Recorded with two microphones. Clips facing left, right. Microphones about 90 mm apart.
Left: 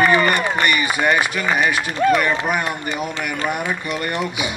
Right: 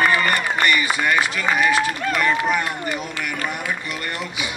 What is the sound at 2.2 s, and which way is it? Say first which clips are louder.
Speech: even; 10° left (ahead or behind).